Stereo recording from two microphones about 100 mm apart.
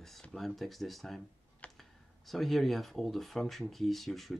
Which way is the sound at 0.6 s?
Centre (ahead or behind).